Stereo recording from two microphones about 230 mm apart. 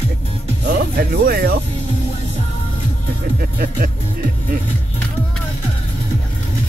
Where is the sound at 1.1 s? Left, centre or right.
Right.